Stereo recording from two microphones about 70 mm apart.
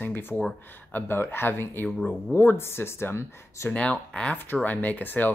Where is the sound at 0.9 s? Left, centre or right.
Left.